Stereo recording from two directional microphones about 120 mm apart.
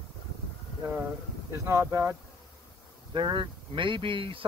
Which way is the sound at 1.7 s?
25° right (ahead or behind).